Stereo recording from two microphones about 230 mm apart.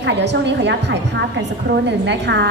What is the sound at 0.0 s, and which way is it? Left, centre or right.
A woman's voice, right.